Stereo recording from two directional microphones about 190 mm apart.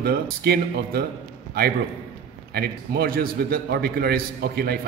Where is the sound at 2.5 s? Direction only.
55° right (ahead or behind).